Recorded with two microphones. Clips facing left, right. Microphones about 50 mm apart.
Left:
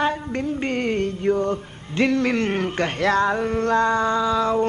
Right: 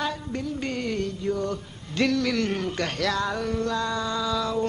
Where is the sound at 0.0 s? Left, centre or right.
Left.